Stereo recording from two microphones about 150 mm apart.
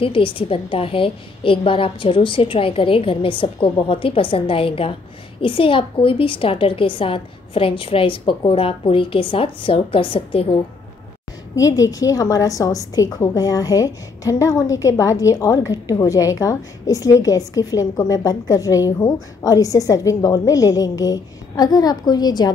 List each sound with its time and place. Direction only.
0.0 s a woman's voice: 35° left (ahead or behind)
11.5 s a woman's voice: 25° left (ahead or behind)